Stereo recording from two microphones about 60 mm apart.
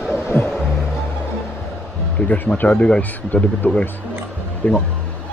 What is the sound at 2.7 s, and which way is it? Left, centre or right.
Speech, centre.